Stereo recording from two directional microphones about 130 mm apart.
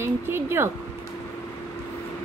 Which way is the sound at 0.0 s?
20° right (ahead or behind).